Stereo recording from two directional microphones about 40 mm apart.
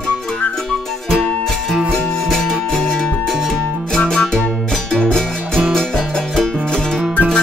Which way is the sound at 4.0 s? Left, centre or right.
Centre.